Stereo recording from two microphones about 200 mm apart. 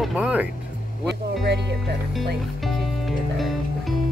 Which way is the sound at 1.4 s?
60° right (ahead or behind).